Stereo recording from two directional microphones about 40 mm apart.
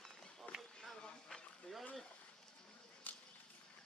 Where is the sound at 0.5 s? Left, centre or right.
Left.